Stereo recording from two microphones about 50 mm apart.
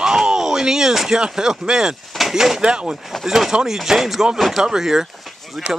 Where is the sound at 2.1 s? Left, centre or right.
Centre.